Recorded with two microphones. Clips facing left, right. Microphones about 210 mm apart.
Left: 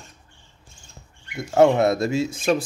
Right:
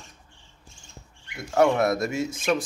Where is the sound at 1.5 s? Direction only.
25° left (ahead or behind).